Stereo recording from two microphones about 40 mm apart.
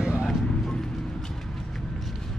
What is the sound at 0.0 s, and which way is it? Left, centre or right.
Vehicle, centre.